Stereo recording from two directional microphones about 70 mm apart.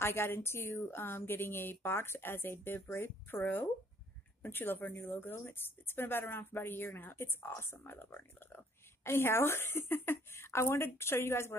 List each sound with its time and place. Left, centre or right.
0.0 s a woman's voice: left